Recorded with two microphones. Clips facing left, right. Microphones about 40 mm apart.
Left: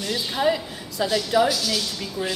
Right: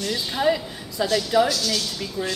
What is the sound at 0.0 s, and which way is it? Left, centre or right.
A woman's voice, centre.